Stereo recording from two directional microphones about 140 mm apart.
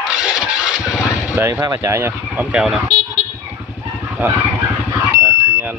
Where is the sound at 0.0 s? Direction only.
5° right (ahead or behind).